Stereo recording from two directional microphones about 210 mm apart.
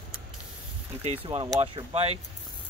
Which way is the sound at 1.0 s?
30° right (ahead or behind).